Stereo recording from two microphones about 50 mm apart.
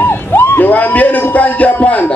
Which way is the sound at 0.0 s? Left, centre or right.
Left.